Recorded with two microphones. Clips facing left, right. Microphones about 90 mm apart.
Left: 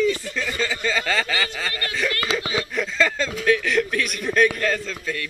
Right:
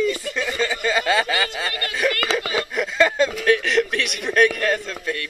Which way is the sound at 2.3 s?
10° right (ahead or behind).